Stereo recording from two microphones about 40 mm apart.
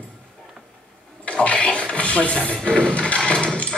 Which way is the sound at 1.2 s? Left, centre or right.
Left.